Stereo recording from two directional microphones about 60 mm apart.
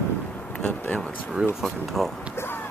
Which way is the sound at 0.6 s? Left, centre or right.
Left.